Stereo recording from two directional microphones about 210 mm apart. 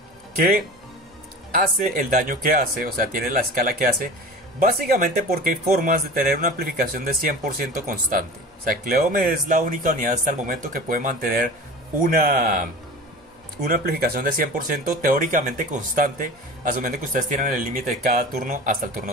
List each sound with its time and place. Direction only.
1.5 s speech: 40° right (ahead or behind)